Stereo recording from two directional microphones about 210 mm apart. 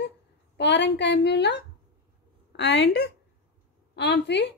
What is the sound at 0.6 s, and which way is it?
A woman's voice, 55° left (ahead or behind).